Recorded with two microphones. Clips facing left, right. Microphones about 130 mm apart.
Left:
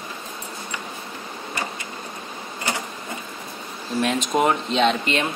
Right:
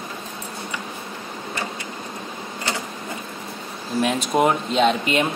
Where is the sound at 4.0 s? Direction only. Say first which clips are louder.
Right 1 dB; 5° right (ahead or behind).